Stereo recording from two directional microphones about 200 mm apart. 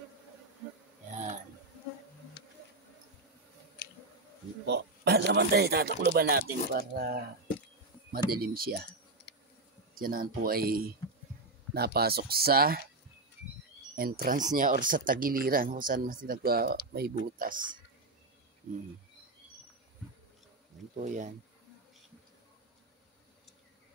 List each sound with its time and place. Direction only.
1.1 s a sound: 35° right (ahead or behind)
3.8 s chewing: 55° left (ahead or behind)
4.6 s speech: 55° right (ahead or behind)
8.3 s speech: 50° right (ahead or behind)
9.9 s speech: 45° right (ahead or behind)
13.9 s speech: 50° right (ahead or behind)
21.0 s speech: 40° right (ahead or behind)